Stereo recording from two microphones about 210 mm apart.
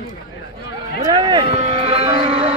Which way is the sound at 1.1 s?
25° right (ahead or behind).